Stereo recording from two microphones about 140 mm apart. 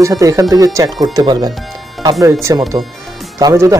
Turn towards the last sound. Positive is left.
turn(degrees=-25)  # may be behind; listen again after turning